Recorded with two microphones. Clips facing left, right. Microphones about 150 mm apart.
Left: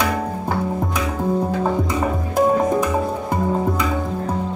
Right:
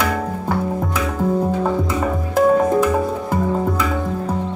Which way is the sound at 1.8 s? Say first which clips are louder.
Right 1 dB; 15° left (ahead or behind).